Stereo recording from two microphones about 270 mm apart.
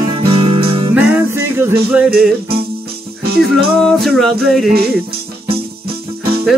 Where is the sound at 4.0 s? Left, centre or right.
Centre.